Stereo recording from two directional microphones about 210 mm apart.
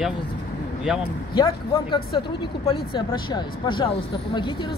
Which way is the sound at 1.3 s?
20° left (ahead or behind).